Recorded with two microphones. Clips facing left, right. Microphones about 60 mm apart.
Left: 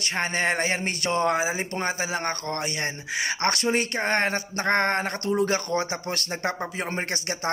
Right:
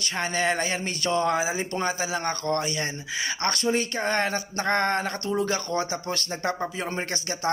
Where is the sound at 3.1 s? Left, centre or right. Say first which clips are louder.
Left 3 dB; left.